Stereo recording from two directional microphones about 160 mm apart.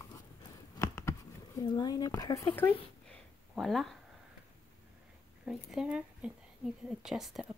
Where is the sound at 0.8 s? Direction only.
20° left (ahead or behind).